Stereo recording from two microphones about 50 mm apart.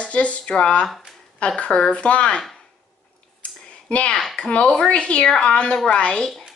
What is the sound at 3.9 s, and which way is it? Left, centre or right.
Speech, left.